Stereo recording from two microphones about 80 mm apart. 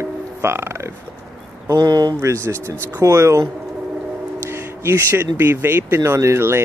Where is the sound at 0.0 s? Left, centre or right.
Right.